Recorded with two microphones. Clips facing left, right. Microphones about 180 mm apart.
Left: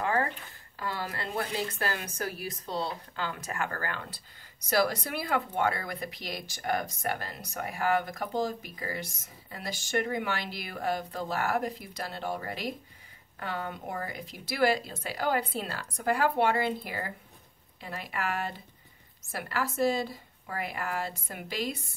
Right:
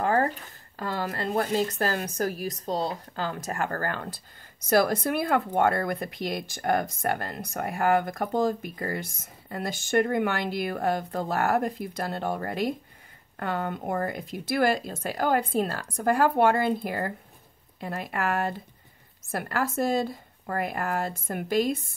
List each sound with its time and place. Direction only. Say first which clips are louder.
0.0 s speech: right 5 dB; 40° right (ahead or behind)